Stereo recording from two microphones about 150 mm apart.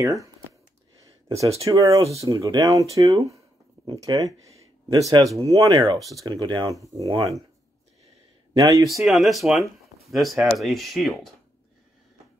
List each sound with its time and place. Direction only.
1.0 s a sound: 20° right (ahead or behind)
2.1 s speech: 20° right (ahead or behind)
8.5 s speech: 25° right (ahead or behind)
8.8 s speech: centre (ahead or behind)